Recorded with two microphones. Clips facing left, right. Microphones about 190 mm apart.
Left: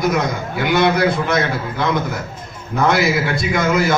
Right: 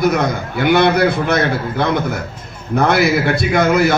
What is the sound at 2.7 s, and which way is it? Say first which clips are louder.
A man's voice: right 2 dB; 60° right (ahead or behind).